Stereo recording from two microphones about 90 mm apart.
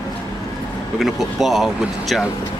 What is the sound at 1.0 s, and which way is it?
Speech, 5° right (ahead or behind).